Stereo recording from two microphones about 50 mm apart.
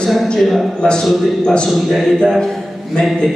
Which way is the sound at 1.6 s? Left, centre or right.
Centre.